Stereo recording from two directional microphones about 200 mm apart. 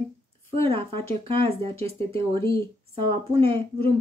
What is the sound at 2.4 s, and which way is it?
Speech, 15° left (ahead or behind).